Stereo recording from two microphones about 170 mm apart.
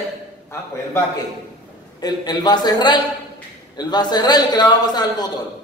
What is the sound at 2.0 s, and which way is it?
A man's voice, 25° left (ahead or behind).